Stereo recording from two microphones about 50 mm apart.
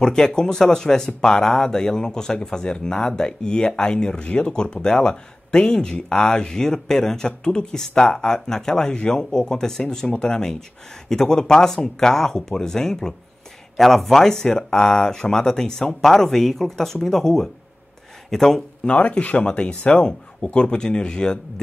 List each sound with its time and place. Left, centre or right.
0.0 s speech: centre
19.0 s speech: left